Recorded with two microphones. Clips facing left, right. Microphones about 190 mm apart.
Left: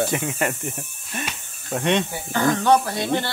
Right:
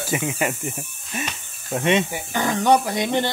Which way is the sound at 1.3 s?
Centre (ahead or behind).